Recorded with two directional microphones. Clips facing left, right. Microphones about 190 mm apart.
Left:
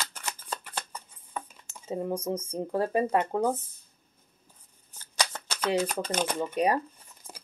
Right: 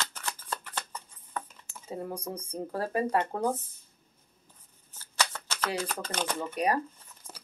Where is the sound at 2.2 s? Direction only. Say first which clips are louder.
Left 5 dB; 25° left (ahead or behind).